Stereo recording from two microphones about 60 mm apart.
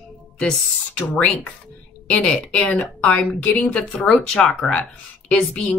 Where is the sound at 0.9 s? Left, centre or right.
Left.